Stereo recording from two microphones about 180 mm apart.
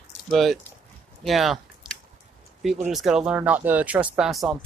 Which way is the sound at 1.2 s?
Centre (ahead or behind).